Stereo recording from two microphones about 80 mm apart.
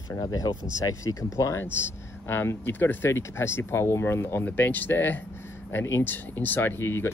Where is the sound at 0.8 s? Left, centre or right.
Left.